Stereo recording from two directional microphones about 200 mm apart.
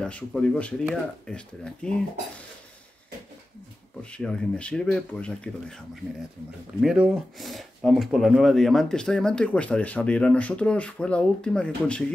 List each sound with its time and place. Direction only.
0.0 s speech: 5° left (ahead or behind)
4.0 s speech: 5° left (ahead or behind)
6.8 s speech: centre (ahead or behind)